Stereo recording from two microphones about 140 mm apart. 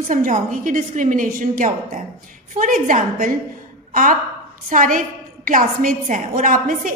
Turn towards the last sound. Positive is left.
turn(degrees=-70)  # may be behind; listen again after turning